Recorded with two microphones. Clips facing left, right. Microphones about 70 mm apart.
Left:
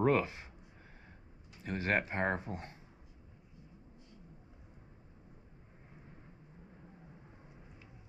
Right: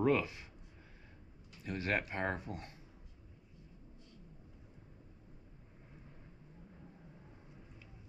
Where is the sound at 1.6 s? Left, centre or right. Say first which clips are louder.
Left 3 dB; left.